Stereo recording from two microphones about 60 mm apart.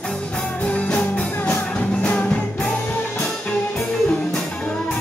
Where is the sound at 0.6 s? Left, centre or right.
Left.